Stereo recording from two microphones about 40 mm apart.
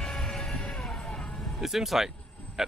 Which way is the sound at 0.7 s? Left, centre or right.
Centre.